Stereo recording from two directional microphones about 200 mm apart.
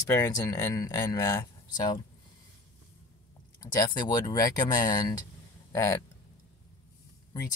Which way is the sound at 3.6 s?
20° left (ahead or behind).